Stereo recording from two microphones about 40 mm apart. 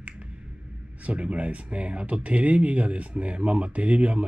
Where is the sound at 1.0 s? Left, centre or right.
Right.